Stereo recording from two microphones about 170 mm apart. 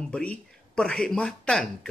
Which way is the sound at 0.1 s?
5° left (ahead or behind).